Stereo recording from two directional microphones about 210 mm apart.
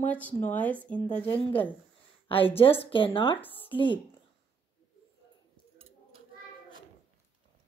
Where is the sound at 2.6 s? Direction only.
25° left (ahead or behind).